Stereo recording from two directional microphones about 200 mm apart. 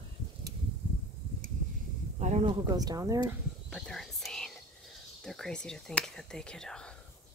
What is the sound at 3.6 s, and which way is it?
Whispering, centre (ahead or behind).